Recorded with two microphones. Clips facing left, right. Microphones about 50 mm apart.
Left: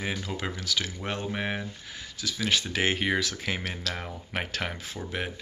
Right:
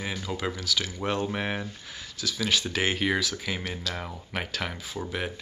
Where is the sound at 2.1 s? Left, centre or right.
Left.